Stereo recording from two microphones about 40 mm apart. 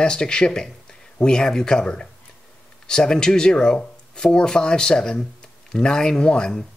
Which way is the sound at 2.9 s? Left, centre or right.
Centre.